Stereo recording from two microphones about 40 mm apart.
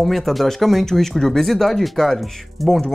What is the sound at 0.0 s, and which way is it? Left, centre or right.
Speech, centre.